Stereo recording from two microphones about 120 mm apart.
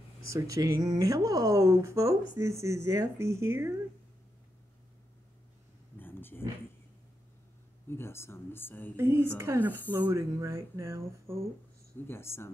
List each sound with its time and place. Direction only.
0.3 s speech: 25° right (ahead or behind)
5.9 s a sound: 15° left (ahead or behind)
7.9 s speech: 20° left (ahead or behind)
8.9 s speech: 20° right (ahead or behind)
12.1 s speech: 20° left (ahead or behind)